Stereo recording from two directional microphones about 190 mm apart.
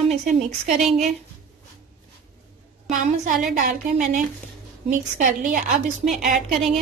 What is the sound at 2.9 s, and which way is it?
A woman's voice, 45° right (ahead or behind).